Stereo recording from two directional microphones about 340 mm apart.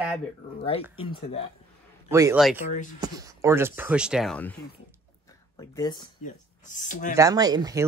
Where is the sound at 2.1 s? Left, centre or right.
Centre; by 7.1 s left.